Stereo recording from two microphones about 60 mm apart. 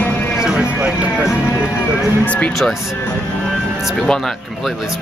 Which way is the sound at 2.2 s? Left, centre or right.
Left.